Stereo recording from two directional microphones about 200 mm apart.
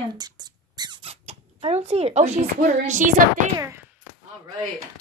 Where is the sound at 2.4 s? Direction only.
40° right (ahead or behind).